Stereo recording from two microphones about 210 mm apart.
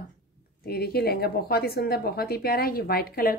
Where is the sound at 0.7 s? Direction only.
50° left (ahead or behind).